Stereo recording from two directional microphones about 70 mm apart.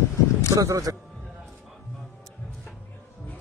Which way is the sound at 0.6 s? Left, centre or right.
Right.